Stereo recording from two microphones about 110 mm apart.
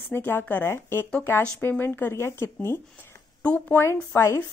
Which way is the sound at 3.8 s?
25° left (ahead or behind).